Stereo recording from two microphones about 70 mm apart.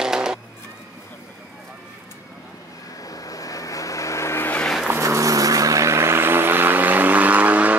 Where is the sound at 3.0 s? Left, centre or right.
Left.